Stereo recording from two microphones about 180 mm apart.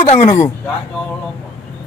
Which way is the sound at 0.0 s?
35° left (ahead or behind).